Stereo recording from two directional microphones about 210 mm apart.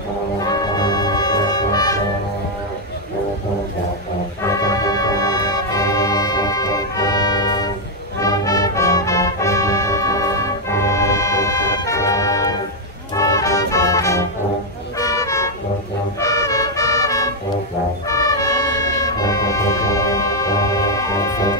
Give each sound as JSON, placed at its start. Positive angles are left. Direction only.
{"t": 0.4, "sound": "music", "side_deg": 20}
{"t": 4.4, "sound": "music", "side_deg": 15}
{"t": 15.0, "sound": "toot", "side_deg": 15}
{"t": 16.2, "sound": "music", "side_deg": 15}